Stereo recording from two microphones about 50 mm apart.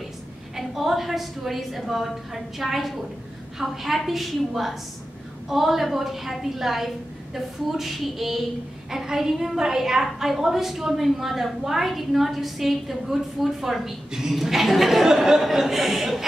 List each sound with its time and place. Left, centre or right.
0.6 s a woman's voice: centre